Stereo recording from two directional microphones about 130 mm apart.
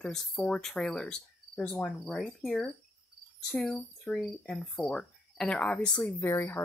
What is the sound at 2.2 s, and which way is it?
Cricket, centre (ahead or behind).